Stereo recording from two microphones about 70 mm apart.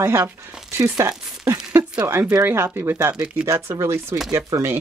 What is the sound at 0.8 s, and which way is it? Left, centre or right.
Speech, right.